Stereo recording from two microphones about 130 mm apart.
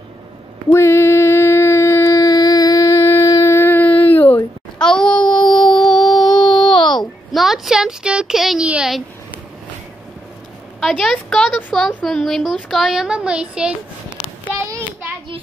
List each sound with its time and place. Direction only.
0.7 s a sound: 20° left (ahead or behind)
4.7 s child singing: 5° left (ahead or behind)
5.7 s music: 5° left (ahead or behind)
6.4 s a sound: 40° left (ahead or behind)
7.3 s speech: centre (ahead or behind)
10.8 s a woman's voice: centre (ahead or behind)